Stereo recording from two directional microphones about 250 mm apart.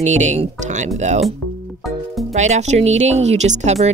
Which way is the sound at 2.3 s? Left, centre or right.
Right.